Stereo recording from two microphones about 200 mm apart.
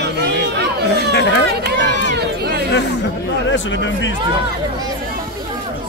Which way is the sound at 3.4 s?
65° left (ahead or behind).